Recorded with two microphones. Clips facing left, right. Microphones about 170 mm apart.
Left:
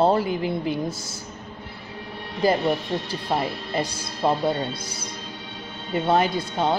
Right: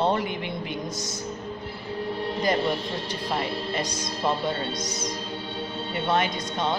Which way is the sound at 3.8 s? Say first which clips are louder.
Left 3 dB; 30° left (ahead or behind).